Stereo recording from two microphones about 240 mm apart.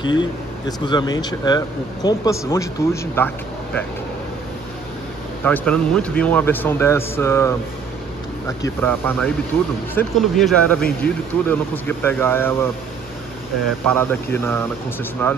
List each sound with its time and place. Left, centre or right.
0.0 s speech: centre
5.4 s speech: centre
13.8 s speech: centre